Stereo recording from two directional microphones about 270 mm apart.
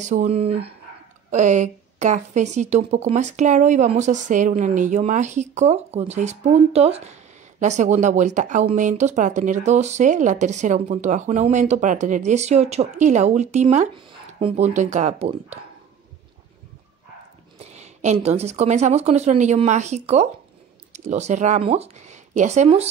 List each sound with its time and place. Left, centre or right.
0.0 s speech: right
17.6 s speech: right